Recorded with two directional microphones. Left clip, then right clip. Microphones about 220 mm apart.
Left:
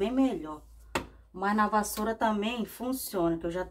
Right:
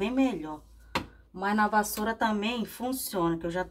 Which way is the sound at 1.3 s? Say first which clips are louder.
Right 1 dB; 15° right (ahead or behind).